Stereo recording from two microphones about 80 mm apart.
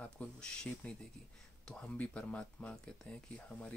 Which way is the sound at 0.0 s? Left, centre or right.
Centre.